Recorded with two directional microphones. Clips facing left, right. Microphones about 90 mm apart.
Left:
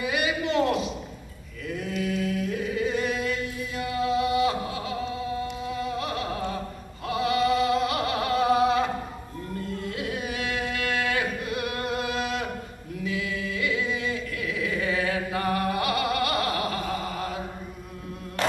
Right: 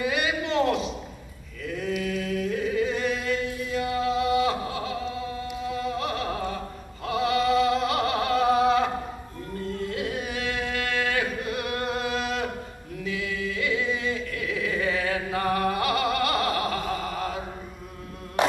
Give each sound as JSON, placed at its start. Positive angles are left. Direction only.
{"t": 0.0, "sound": "a sound", "side_deg": -35}
{"t": 2.0, "sound": "chant", "side_deg": -35}
{"t": 5.7, "sound": "music", "side_deg": -35}
{"t": 9.8, "sound": "a sound", "side_deg": -35}
{"t": 15.0, "sound": "music", "side_deg": -30}
{"t": 16.8, "sound": "mantra", "side_deg": -35}
{"t": 18.4, "sound": "music", "side_deg": -20}